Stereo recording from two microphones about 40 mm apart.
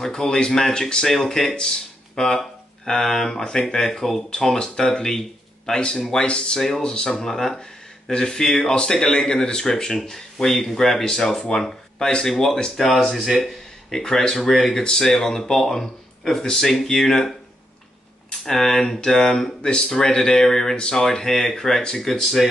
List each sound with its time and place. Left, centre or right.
0.0 s speech: centre
12.7 s speech: centre
14.8 s speech: centre
18.4 s speech: centre
21.0 s speech: centre